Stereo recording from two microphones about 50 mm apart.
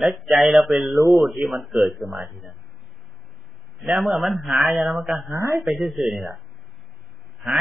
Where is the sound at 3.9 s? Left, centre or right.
Centre.